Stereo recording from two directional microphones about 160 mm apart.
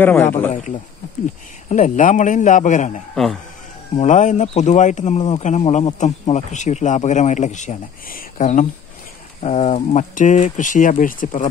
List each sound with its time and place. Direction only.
0.0 s a man's voice: 15° left (ahead or behind)
0.5 s speech: 50° left (ahead or behind)